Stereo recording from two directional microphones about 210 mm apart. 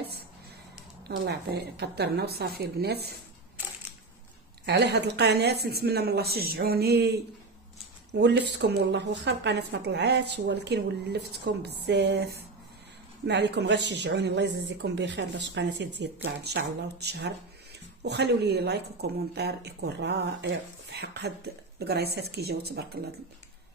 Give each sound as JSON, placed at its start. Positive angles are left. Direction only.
{"t": 1.0, "sound": "a woman's voice", "side_deg": -50}
{"t": 4.6, "sound": "a woman's voice", "side_deg": -50}
{"t": 8.1, "sound": "a woman's voice", "side_deg": -55}